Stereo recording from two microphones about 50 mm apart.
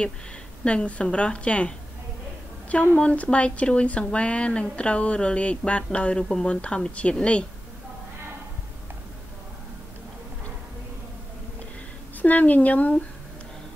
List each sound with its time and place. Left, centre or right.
0.7 s a woman's voice: left
3.0 s a woman's voice: left
12.2 s speech: left